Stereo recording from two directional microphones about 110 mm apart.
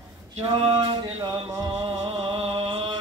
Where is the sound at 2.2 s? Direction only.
60° right (ahead or behind).